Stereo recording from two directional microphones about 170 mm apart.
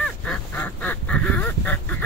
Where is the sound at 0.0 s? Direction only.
5° left (ahead or behind).